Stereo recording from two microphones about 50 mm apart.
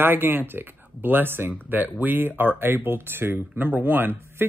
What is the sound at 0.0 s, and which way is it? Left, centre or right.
Speech, right.